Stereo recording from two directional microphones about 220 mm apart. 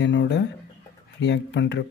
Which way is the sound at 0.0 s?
55° left (ahead or behind).